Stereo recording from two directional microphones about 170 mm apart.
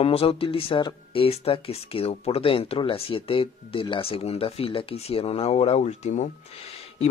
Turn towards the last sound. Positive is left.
turn(degrees=35)  # may be behind; listen again after turning